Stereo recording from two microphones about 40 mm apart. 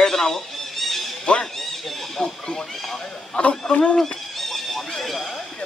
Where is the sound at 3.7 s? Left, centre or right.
Left.